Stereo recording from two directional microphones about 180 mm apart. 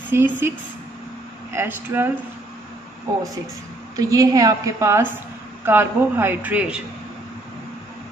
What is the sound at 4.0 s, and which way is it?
A woman's voice, 20° right (ahead or behind).